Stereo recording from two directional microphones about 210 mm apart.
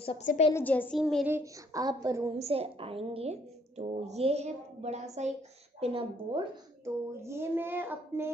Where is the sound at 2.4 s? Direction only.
30° right (ahead or behind).